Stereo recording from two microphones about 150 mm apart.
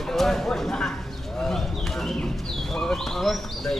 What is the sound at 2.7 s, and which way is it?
Bird, centre (ahead or behind).